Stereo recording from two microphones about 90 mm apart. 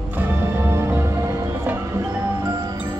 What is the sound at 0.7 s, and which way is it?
Music, 30° right (ahead or behind).